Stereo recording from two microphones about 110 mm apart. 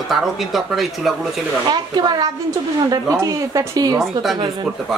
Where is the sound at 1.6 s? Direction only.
40° right (ahead or behind).